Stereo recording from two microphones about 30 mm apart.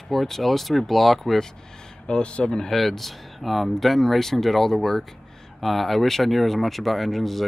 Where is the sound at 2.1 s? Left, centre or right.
Left.